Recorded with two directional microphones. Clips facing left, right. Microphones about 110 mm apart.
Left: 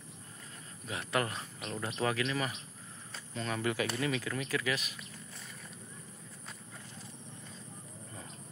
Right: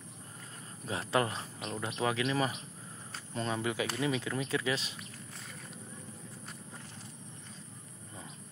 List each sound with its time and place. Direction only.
0.8 s speech: 30° right (ahead or behind)
3.4 s speech: 20° right (ahead or behind)